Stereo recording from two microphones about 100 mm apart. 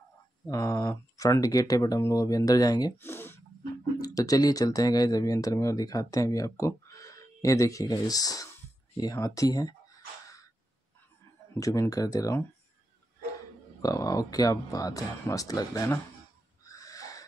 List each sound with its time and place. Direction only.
0.5 s speech: 35° left (ahead or behind)
3.0 s speech: 25° left (ahead or behind)
4.0 s speech: 35° left (ahead or behind)
11.9 s speech: 40° left (ahead or behind)
13.7 s speech: 35° left (ahead or behind)
16.6 s owl: 35° left (ahead or behind)